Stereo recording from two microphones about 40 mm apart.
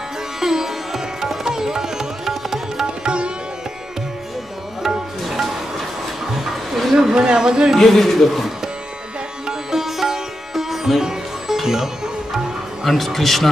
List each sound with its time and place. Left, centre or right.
0.4 s music: centre
3.0 s sitar: right
4.8 s music: centre
6.3 s a sound: centre
7.2 s speech: right
7.8 s a man's voice: centre
9.5 s music: centre
12.8 s a man's voice: centre